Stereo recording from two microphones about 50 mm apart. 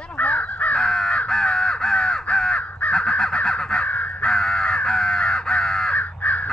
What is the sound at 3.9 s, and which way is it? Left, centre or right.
Crow, left.